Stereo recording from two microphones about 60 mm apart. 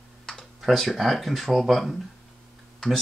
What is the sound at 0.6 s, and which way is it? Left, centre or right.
Speech, centre.